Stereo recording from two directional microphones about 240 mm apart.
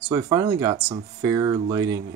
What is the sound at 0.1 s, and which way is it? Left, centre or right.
Speech, centre.